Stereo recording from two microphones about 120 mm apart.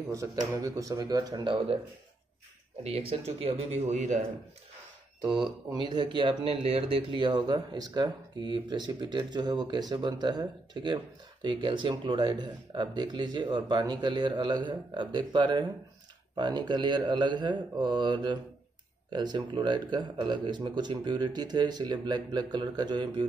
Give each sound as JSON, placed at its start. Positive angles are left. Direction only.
{"t": 0.1, "sound": "speech", "side_deg": -25}
{"t": 2.8, "sound": "speech", "side_deg": -55}
{"t": 5.2, "sound": "speech", "side_deg": -35}